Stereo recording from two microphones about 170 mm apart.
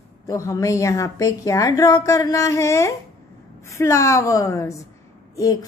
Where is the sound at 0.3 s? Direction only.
20° left (ahead or behind).